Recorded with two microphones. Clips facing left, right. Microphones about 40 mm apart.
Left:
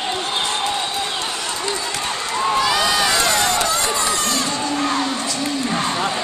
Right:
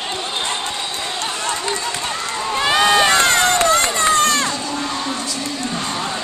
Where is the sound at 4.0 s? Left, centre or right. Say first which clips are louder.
Right 5 dB; right.